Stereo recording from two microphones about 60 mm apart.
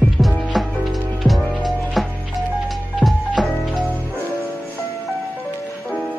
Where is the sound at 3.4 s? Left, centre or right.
Centre.